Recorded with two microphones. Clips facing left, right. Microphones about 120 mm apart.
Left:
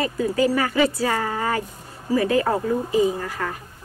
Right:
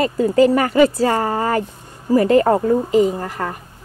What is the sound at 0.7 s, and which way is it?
Speech, 45° right (ahead or behind).